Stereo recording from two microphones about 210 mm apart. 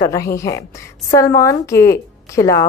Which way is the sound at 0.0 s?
15° left (ahead or behind).